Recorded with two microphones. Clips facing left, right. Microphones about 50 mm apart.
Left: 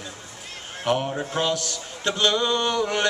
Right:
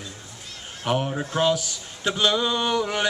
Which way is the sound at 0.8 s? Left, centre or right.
Centre.